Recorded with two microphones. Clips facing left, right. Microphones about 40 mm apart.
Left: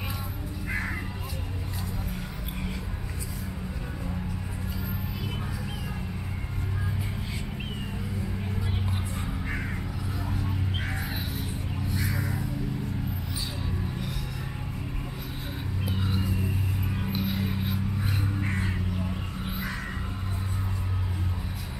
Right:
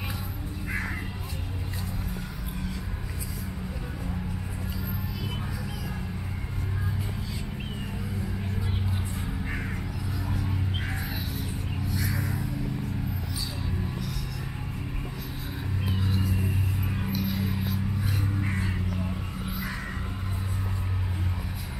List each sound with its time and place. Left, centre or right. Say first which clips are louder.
0.7 s crow: left 1 dB; centre
9.4 s crow: left 1 dB; centre
11.9 s a sound: even; centre
16.3 s vehicle: right 1 dB; centre
17.1 s music: even; left
18.3 s crow: even; centre